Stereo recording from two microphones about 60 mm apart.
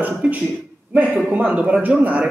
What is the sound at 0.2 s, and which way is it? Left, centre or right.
A man's voice, centre.